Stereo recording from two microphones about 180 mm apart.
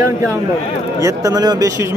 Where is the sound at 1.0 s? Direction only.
20° right (ahead or behind).